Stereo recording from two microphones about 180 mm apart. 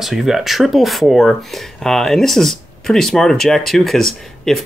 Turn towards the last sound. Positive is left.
turn(degrees=0)  # may be behind; listen again after turning